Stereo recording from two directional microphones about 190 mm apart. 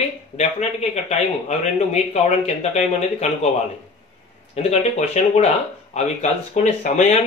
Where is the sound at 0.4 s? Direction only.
35° left (ahead or behind).